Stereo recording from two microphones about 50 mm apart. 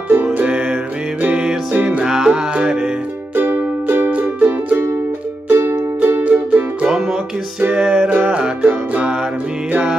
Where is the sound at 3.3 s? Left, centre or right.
Right.